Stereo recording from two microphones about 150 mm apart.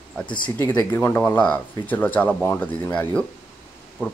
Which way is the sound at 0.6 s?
15° left (ahead or behind).